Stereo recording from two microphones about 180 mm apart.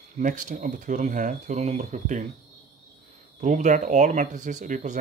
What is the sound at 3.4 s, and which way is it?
Speech, 45° right (ahead or behind).